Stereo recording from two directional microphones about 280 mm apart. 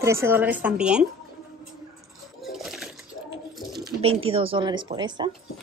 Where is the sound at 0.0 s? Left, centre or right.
Centre.